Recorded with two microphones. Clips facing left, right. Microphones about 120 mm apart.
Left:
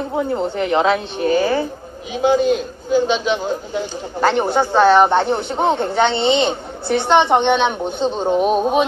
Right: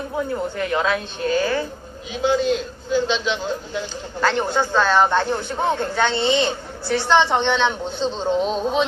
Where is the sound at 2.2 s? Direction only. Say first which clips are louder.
Left 4 dB; 50° left (ahead or behind).